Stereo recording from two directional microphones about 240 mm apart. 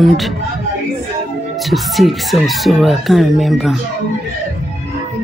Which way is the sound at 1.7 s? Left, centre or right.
Centre.